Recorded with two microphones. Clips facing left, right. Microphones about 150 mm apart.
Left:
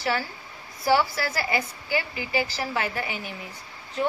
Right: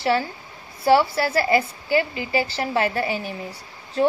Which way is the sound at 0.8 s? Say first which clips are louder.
Right 5 dB; 30° right (ahead or behind).